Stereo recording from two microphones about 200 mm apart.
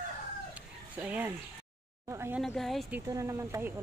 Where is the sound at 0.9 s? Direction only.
5° right (ahead or behind).